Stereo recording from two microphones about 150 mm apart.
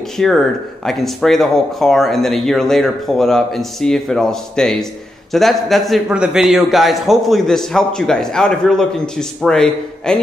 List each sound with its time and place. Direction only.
0.2 s a man's voice: 5° left (ahead or behind)